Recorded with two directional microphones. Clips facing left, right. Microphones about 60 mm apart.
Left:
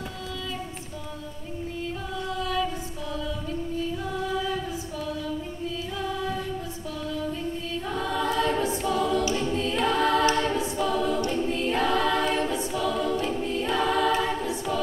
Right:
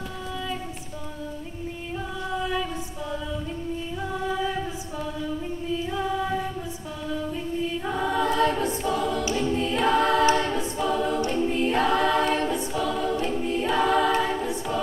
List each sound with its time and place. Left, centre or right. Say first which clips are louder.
2.3 s female singing: even; centre
4.4 s female singing: right 1 dB; right
5.7 s music: right 5 dB; centre
7.3 s a capella: right 3 dB; centre